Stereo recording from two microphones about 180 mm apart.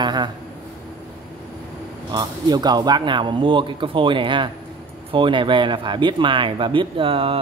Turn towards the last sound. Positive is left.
turn(degrees=-30)  # may be behind; listen again after turning